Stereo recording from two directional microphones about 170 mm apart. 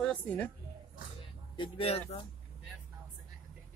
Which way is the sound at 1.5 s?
35° left (ahead or behind).